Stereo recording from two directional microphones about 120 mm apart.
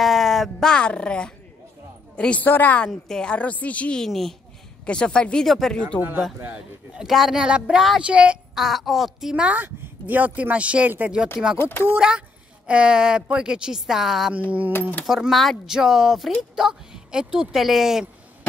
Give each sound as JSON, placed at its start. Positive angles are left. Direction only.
{"t": 0.0, "sound": "a woman's voice", "side_deg": 0}
{"t": 5.9, "sound": "speech", "side_deg": -15}
{"t": 11.5, "sound": "speech", "side_deg": 20}
{"t": 12.0, "sound": "speech", "side_deg": -10}
{"t": 14.7, "sound": "a woman's voice", "side_deg": 15}
{"t": 15.0, "sound": "speech", "side_deg": 0}